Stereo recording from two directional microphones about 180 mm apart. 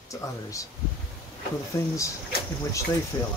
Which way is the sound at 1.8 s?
15° left (ahead or behind).